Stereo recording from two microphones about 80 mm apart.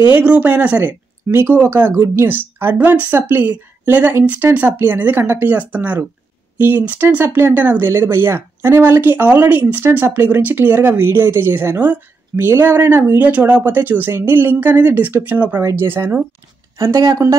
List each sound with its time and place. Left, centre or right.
0.2 s speech: centre
16.7 s speech: right